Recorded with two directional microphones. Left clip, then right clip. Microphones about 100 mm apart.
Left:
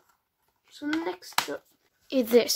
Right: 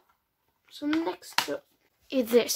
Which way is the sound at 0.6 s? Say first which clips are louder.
Right 2 dB; 15° left (ahead or behind).